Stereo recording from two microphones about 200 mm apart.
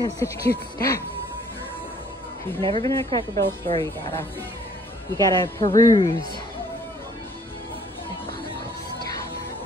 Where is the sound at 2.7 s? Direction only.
15° left (ahead or behind).